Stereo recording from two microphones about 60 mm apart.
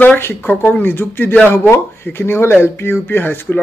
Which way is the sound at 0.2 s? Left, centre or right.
Left.